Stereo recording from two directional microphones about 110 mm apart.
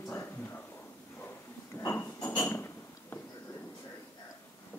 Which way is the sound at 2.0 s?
20° left (ahead or behind).